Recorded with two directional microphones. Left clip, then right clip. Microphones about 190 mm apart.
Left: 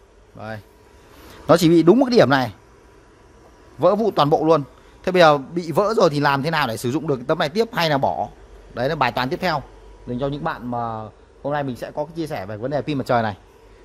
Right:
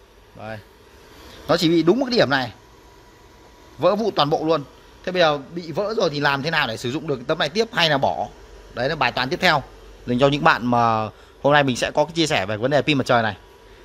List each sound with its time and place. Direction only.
0.4 s a man's voice: 20° left (ahead or behind)
3.8 s a man's voice: 15° left (ahead or behind)
6.2 s speech: 15° left (ahead or behind)
10.0 s a man's voice: 10° right (ahead or behind)
13.1 s speech: 10° left (ahead or behind)